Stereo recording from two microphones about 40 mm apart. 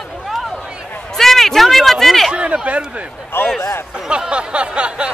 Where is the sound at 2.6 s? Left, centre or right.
Right.